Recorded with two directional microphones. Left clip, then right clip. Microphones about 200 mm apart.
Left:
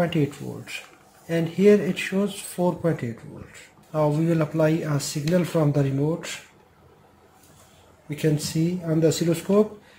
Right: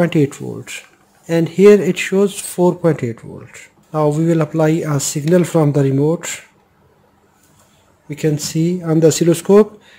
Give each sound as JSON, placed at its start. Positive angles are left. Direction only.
{"t": 0.0, "sound": "speech", "side_deg": -55}
{"t": 8.1, "sound": "speech", "side_deg": -35}
{"t": 8.5, "sound": "speech", "side_deg": -50}